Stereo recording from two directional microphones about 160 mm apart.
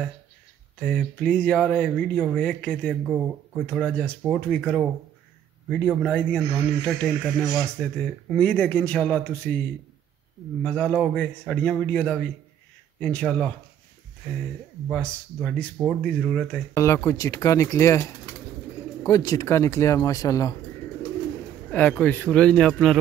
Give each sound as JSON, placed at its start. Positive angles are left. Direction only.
{"t": 0.7, "sound": "speech", "side_deg": 5}
{"t": 3.1, "sound": "speech", "side_deg": -5}
{"t": 3.6, "sound": "a man's voice", "side_deg": 5}
{"t": 10.6, "sound": "speech", "side_deg": 5}
{"t": 14.9, "sound": "a man's voice", "side_deg": 5}
{"t": 16.7, "sound": "speech", "side_deg": 15}
{"t": 21.6, "sound": "speech", "side_deg": 10}